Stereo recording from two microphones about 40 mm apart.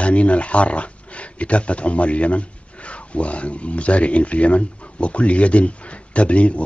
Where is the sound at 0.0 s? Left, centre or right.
Left.